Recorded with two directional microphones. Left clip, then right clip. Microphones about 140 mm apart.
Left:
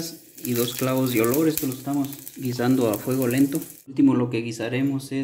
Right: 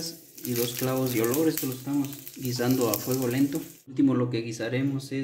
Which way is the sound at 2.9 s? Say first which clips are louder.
Left 4 dB; 50° left (ahead or behind).